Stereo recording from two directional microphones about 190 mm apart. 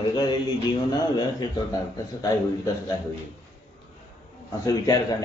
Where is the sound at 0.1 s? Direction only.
20° left (ahead or behind).